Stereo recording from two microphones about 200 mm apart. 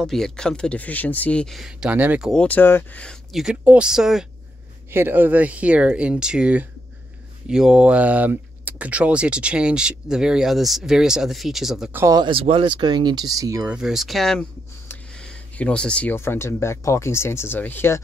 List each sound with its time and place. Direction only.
0.0 s speech: 5° left (ahead or behind)
12.0 s speech: 20° right (ahead or behind); by 18.0 s 10° left (ahead or behind)